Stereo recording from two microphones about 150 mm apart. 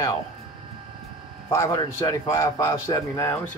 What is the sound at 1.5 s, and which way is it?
A man's voice, 20° left (ahead or behind).